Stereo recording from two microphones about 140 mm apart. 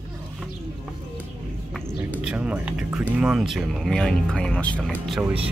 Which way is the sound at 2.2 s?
10° right (ahead or behind).